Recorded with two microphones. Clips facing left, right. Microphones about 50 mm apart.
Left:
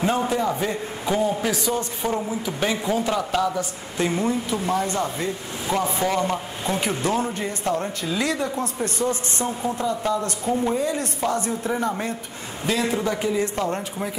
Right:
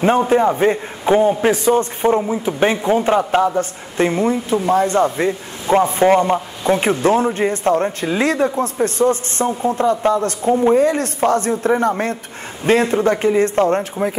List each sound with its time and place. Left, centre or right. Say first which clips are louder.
0.3 s a man's voice: right 9 dB; right
10.8 s a man's voice: right 9 dB; right